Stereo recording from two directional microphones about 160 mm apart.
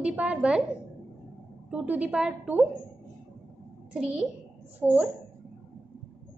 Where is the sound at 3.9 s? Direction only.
5° right (ahead or behind).